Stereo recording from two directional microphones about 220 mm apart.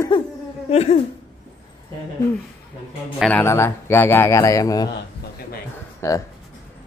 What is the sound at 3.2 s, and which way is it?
A man's voice, 5° left (ahead or behind).